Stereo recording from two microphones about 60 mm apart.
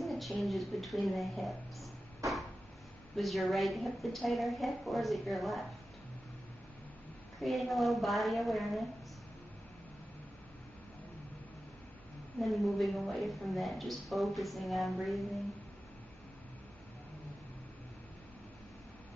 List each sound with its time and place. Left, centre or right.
0.0 s a woman's voice: centre
7.3 s a woman's voice: centre
12.4 s a woman's voice: centre